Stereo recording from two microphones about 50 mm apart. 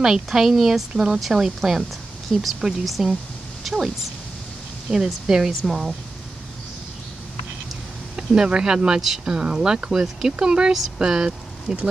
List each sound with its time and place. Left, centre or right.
0.0 s speech: centre
4.9 s speech: centre
5.5 s speech: centre
8.2 s a sound: centre
8.5 s speech: centre